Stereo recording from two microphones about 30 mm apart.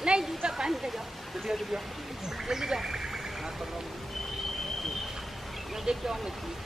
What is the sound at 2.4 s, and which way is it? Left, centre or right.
Vehicle, centre.